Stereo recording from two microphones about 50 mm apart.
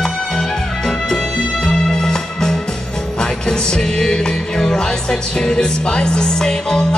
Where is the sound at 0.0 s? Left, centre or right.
Centre.